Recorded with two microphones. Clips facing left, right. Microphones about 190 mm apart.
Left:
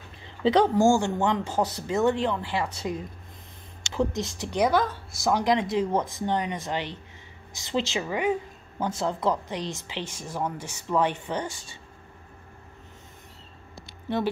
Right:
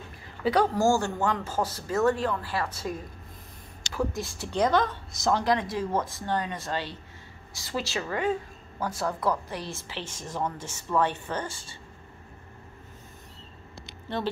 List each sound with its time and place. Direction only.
0.4 s speech: 25° left (ahead or behind)
3.8 s a sound: 25° left (ahead or behind)
4.2 s a woman's voice: 20° left (ahead or behind)